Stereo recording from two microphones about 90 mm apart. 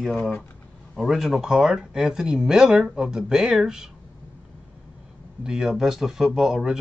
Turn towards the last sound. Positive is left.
turn(degrees=-5)  # may be behind; listen again after turning